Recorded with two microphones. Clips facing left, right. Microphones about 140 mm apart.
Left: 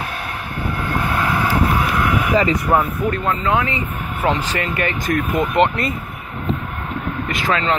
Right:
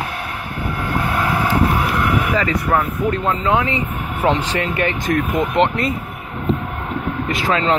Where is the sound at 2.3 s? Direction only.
25° left (ahead or behind).